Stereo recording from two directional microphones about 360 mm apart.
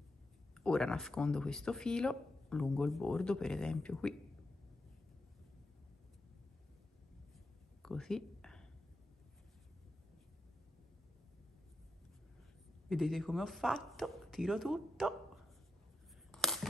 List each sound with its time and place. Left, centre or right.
0.6 s speech: centre
7.8 s whispering: centre
12.9 s speech: centre
16.3 s a sound: centre